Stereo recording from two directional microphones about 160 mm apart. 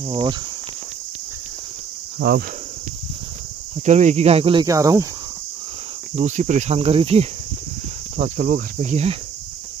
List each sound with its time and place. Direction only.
0.1 s speech: 30° right (ahead or behind)
2.1 s speech: 90° right
3.8 s speech: 45° right (ahead or behind)
4.6 s speech: 20° right (ahead or behind)
6.1 s cricket: 50° right (ahead or behind)
8.4 s cricket: 60° right (ahead or behind); by 9.1 s 45° right (ahead or behind)